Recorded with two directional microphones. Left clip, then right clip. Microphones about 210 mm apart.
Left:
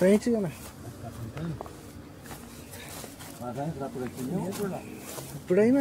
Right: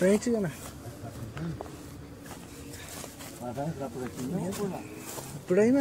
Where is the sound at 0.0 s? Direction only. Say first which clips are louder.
Left 2 dB; 10° left (ahead or behind).